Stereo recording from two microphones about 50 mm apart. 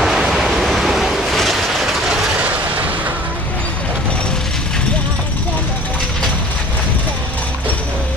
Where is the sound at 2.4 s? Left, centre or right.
Right.